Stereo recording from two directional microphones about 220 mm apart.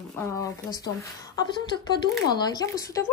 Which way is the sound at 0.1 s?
15° left (ahead or behind).